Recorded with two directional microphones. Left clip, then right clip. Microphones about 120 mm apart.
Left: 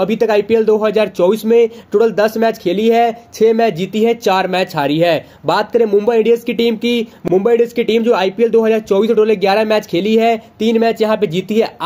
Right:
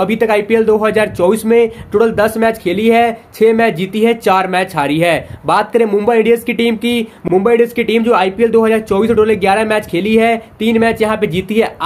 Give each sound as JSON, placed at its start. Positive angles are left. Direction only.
{"t": 0.0, "sound": "speech", "side_deg": 40}